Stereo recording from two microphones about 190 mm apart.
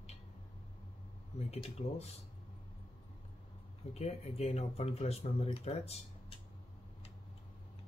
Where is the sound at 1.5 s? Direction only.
35° left (ahead or behind).